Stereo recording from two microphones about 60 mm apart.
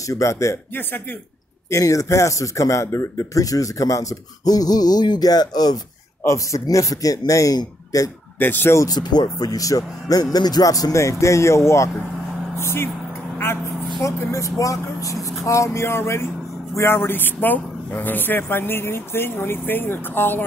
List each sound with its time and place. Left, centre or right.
0.1 s speech: left
1.7 s speech: left
6.2 s speech: left
8.4 s speech: left
9.4 s speech: left
14.0 s speech: left